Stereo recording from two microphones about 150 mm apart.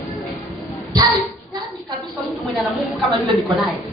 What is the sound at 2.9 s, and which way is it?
Speech, centre (ahead or behind).